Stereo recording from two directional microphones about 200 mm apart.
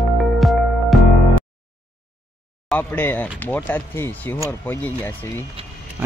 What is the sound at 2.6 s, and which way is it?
Speech, 10° left (ahead or behind).